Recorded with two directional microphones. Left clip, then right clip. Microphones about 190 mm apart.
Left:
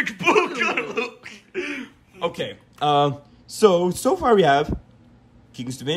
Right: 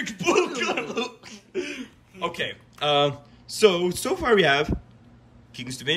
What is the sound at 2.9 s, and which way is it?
Speech, 25° left (ahead or behind).